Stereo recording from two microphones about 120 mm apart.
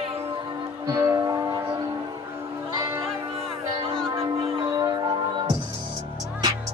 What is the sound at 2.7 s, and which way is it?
Music, 20° right (ahead or behind).